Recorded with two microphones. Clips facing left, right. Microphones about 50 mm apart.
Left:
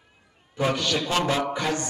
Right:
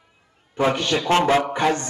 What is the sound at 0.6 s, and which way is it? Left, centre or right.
A man's voice, right.